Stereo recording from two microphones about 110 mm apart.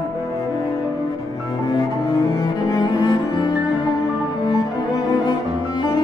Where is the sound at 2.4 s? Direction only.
40° left (ahead or behind).